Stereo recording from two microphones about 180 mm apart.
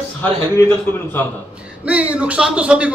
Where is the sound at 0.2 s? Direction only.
10° left (ahead or behind).